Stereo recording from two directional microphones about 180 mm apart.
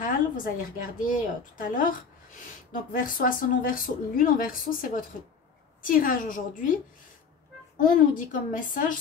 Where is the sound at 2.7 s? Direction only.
50° left (ahead or behind).